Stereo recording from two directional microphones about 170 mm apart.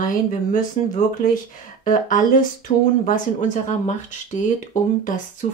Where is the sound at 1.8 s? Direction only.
50° left (ahead or behind).